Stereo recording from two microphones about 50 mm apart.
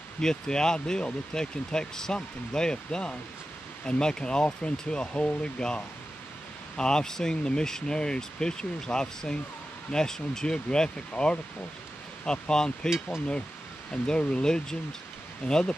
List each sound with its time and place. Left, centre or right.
0.2 s speech: centre
6.8 s speech: centre
14.0 s speech: centre